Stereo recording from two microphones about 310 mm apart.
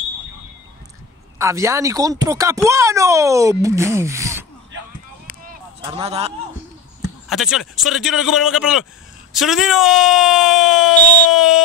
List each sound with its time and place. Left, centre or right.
1.4 s speech: centre
5.8 s a man's voice: centre
7.2 s speech: centre